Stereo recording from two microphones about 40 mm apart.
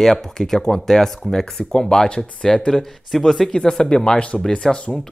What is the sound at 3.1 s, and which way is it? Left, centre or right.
Speech, centre.